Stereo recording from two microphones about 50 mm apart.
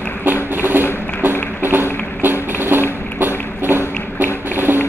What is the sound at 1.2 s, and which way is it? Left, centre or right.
Music, right.